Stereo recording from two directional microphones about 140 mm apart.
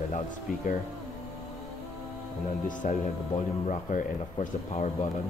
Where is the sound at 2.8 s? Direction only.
55° left (ahead or behind).